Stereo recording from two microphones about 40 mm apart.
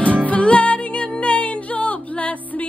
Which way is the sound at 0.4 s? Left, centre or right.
Left.